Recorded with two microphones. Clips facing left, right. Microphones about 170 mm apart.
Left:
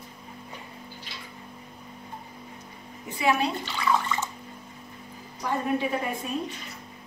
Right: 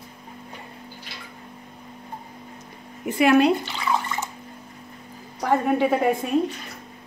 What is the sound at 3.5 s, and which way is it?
Bathtub, 15° right (ahead or behind).